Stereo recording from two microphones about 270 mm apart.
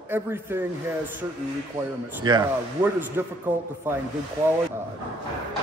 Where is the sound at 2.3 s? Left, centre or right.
Centre.